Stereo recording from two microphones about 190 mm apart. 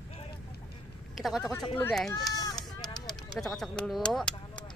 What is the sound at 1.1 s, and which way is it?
Speech, centre (ahead or behind).